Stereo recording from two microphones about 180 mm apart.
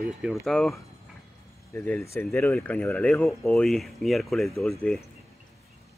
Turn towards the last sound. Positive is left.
turn(degrees=0)  # may be behind; listen again after turning